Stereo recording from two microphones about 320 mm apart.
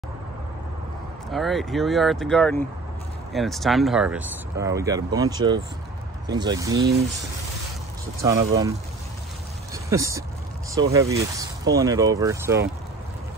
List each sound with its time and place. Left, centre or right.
1.3 s speech: centre
8.2 s speech: centre
9.8 s speech: centre